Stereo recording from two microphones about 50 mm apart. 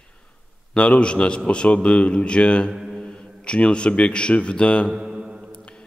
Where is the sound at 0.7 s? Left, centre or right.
Left.